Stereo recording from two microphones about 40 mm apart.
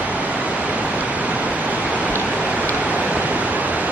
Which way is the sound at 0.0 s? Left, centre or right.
Right.